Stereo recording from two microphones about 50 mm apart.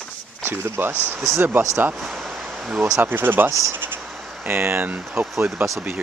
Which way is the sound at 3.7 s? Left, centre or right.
Right.